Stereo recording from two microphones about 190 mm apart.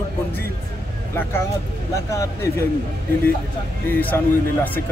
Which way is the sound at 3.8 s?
10° left (ahead or behind).